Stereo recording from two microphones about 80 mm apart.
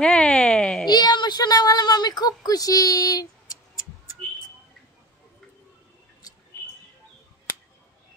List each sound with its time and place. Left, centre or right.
0.0 s a sound: centre
0.8 s a woman's voice: left
6.2 s mouse: left